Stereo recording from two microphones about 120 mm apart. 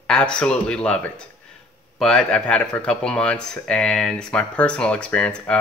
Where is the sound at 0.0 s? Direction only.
10° left (ahead or behind).